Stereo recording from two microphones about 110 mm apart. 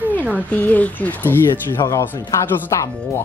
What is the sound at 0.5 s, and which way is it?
Speech, 15° left (ahead or behind).